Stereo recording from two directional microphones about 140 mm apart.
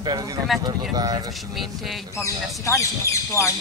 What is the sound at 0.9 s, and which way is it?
Speech, 25° right (ahead or behind).